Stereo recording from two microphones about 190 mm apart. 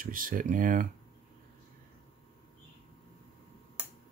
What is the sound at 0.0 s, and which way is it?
Speech, 45° right (ahead or behind).